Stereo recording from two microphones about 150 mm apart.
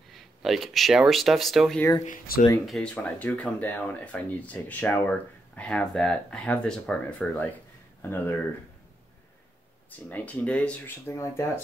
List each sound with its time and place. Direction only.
0.1 s speech: centre (ahead or behind)
1.8 s speech: 20° left (ahead or behind)
2.0 s speech: 80° left
2.6 s speech: 5° left (ahead or behind)
9.8 s speech: 10° left (ahead or behind)